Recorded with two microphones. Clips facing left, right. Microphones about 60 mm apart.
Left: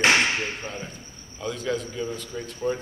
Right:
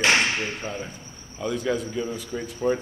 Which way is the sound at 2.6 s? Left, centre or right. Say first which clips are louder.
Right 3 dB; centre.